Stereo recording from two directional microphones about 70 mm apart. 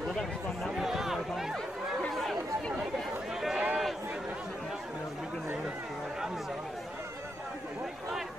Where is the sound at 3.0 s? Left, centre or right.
Centre.